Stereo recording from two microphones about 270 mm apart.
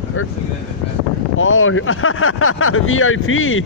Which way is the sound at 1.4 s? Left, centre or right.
Left.